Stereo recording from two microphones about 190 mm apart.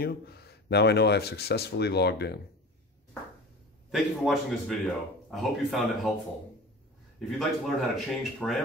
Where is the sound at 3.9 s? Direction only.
Centre (ahead or behind).